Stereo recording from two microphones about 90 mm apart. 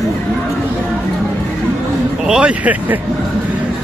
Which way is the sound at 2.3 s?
15° right (ahead or behind).